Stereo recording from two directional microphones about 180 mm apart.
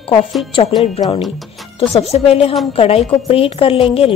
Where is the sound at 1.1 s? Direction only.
Centre (ahead or behind).